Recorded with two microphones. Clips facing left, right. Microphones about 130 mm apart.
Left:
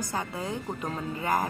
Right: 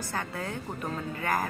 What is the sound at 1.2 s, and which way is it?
Music, 20° left (ahead or behind).